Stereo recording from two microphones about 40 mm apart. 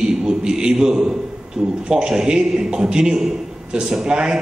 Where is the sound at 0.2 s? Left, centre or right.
Centre.